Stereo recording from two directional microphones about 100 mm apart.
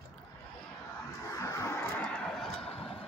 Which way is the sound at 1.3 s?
35° left (ahead or behind).